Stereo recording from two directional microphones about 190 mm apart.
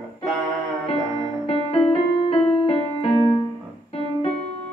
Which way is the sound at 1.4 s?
30° left (ahead or behind).